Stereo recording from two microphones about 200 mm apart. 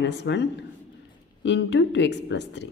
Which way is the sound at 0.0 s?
60° left (ahead or behind).